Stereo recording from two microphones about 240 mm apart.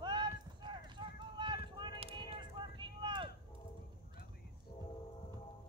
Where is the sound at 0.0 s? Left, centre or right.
Centre.